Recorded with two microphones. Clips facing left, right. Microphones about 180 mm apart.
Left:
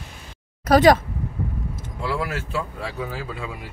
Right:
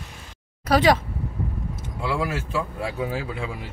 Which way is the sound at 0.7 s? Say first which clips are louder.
Left 4 dB; 45° left (ahead or behind).